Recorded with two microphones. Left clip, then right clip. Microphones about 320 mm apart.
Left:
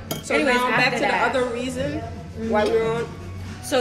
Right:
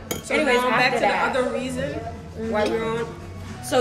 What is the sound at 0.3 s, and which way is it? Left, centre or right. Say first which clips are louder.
A woman's voice: even; centre.